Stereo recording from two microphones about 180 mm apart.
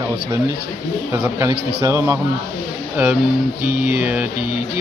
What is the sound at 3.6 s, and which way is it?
Music, 55° right (ahead or behind).